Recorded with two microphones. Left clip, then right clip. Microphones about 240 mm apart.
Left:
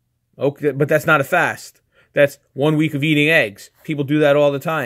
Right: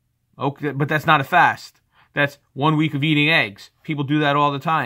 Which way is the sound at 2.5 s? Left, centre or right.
Centre.